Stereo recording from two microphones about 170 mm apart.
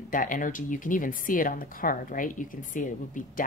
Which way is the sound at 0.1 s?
50° left (ahead or behind).